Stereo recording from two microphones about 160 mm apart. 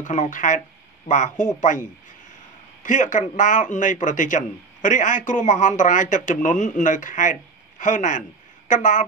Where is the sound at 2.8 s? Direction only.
50° left (ahead or behind).